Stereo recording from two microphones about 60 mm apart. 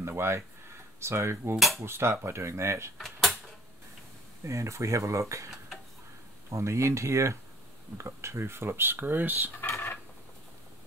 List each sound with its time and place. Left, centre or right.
0.0 s a sound: right
1.0 s speech: right
3.0 s drawer open or close: centre
4.5 s speech: right
6.5 s speech: right
9.6 s a sound: left